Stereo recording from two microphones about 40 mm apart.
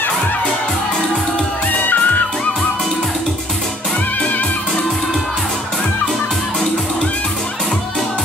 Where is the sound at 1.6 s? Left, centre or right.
Left.